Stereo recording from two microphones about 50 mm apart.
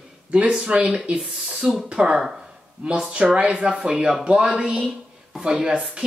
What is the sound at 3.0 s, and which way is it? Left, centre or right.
Speech, centre.